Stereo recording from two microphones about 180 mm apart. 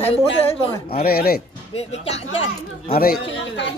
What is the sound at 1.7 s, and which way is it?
Speech, 35° left (ahead or behind).